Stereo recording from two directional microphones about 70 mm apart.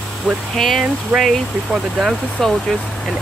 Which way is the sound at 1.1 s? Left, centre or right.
Right.